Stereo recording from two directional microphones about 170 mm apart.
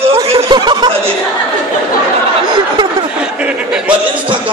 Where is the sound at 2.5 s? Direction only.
25° right (ahead or behind).